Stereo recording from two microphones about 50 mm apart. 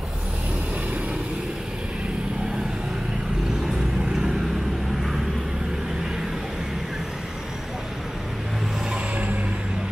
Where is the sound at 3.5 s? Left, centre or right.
Centre.